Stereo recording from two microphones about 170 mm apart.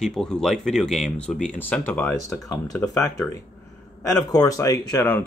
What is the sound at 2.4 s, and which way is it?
Speech, 20° left (ahead or behind).